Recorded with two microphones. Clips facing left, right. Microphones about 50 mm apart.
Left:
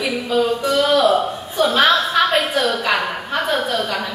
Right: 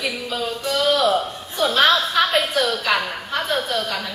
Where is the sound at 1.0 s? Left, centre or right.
Centre.